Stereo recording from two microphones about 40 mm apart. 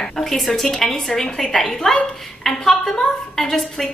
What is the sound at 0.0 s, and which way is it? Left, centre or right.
A woman's voice, centre.